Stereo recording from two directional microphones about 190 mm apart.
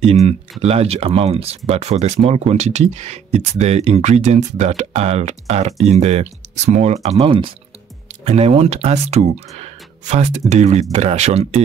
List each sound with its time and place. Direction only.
0.0 s speech: 35° right (ahead or behind)